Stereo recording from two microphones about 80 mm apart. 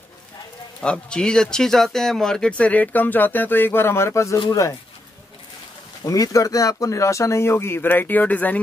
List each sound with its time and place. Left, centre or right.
0.7 s speech: centre; by 4.7 s left
6.0 s speech: left; by 8.5 s centre